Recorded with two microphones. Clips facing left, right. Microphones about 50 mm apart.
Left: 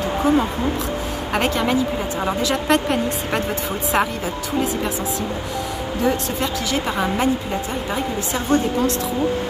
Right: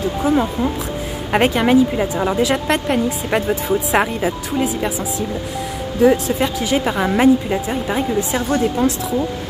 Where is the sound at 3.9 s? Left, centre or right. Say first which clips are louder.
Right 2 dB; centre.